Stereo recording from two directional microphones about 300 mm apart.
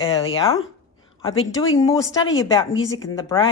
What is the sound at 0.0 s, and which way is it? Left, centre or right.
Speech, centre.